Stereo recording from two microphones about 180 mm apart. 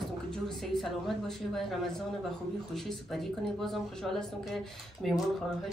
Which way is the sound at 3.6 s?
Centre (ahead or behind).